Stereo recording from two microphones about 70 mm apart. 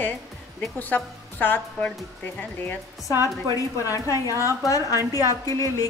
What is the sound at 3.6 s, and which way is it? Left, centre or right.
A woman's voice, left.